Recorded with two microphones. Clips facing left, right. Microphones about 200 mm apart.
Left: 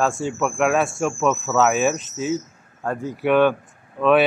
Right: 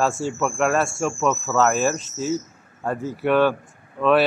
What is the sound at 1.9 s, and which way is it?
Speech, 55° left (ahead or behind).